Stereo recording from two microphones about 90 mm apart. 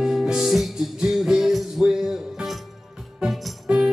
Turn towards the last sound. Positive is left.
turn(degrees=-5)  # may be behind; listen again after turning